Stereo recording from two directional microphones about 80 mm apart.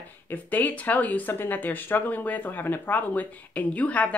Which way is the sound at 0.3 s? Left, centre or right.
Left.